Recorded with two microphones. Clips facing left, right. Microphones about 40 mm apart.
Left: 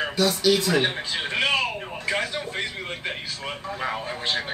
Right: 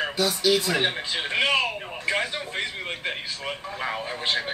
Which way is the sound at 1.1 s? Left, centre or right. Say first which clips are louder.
Right 1 dB; centre.